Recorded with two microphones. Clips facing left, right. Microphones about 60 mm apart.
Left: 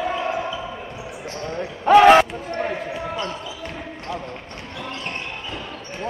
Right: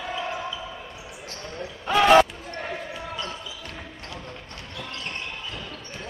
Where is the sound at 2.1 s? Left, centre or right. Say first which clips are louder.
Left 3 dB; left.